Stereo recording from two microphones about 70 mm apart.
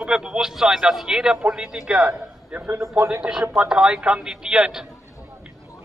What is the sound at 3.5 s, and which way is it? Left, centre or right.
Speech, centre.